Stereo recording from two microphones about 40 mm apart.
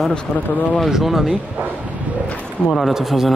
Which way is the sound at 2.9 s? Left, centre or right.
Centre.